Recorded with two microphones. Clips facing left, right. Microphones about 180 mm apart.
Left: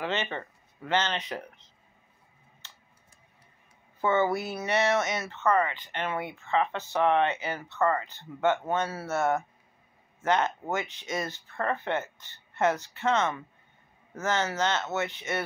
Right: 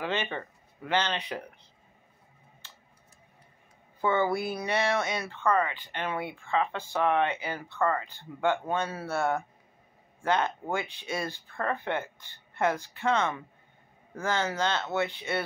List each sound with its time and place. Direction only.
0.1 s speech: 15° right (ahead or behind)
4.3 s speech: 15° right (ahead or behind)
5.5 s speech: 20° left (ahead or behind)
5.9 s speech: 15° right (ahead or behind)
6.5 s speech: 20° left (ahead or behind)
7.2 s speech: 15° right (ahead or behind)
7.8 s speech: 20° left (ahead or behind)
8.6 s speech: 15° right (ahead or behind)
10.4 s speech: 15° right (ahead or behind)